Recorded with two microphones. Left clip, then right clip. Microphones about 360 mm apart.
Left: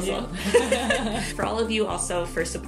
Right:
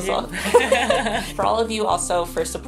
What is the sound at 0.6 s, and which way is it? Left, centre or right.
Chuckle, right.